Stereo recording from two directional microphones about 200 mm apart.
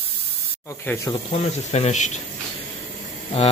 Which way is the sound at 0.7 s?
15° left (ahead or behind).